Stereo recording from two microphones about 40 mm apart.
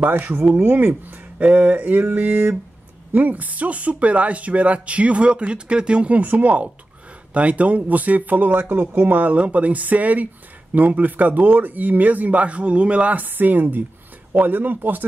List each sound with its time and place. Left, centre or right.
0.0 s speech: right
1.4 s speech: right
9.1 s speech: right
13.2 s speech: right